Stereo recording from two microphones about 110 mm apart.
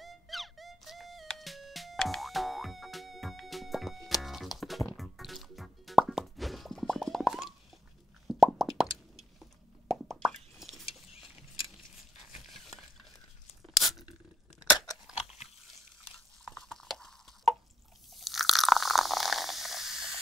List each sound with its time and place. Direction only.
0.0 s music: centre (ahead or behind)
4.6 s plop: centre (ahead or behind)
10.0 s plop: centre (ahead or behind)
12.5 s a sound: centre (ahead or behind)
15.1 s biting: 70° left (ahead or behind)
16.4 s a sound: 5° left (ahead or behind)
18.1 s crunch: centre (ahead or behind)